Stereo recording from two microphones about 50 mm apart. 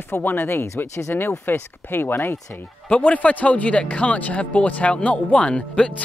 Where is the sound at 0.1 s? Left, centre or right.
Left.